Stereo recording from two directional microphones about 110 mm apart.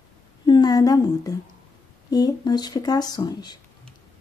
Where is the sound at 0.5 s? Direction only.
35° left (ahead or behind).